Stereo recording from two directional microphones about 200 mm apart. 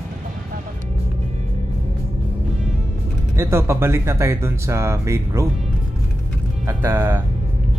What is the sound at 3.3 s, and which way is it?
Speech, 15° right (ahead or behind).